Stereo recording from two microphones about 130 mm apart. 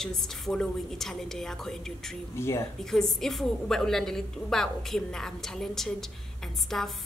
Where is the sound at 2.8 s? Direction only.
Centre (ahead or behind).